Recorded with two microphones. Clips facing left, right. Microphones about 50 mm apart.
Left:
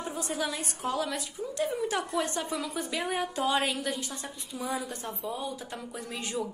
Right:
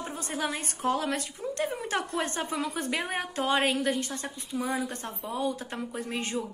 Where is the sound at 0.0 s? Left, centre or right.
Right.